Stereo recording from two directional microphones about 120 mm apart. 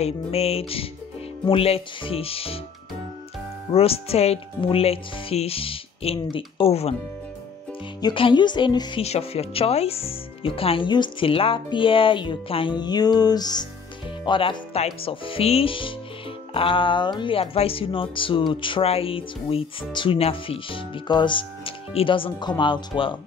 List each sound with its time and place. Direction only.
0.0 s speech: 60° left (ahead or behind)
3.7 s speech: 55° left (ahead or behind)
8.0 s speech: 45° left (ahead or behind)
9.0 s speech: 60° left (ahead or behind)